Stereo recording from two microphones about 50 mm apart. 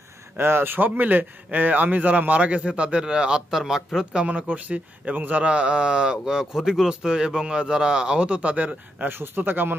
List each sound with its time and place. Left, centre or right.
0.4 s a man's voice: right
9.4 s speech: right